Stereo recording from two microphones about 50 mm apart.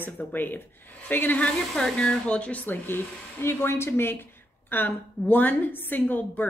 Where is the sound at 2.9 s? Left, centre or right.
Left.